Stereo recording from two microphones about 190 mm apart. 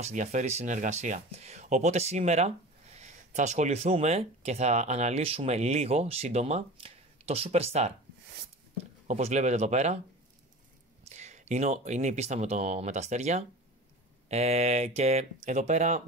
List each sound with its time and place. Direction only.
0.0 s speech: 40° right (ahead or behind)
9.0 s speech: 35° right (ahead or behind)
11.1 s speech: 35° right (ahead or behind)